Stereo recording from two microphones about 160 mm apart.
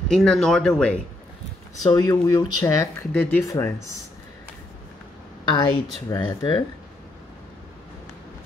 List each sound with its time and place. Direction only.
0.1 s speech: 5° left (ahead or behind)
1.9 s speech: 25° left (ahead or behind)
3.1 s speech: 10° left (ahead or behind)
5.4 s a woman's voice: 30° left (ahead or behind)